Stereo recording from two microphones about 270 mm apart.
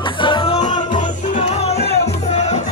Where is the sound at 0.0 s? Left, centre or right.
Centre.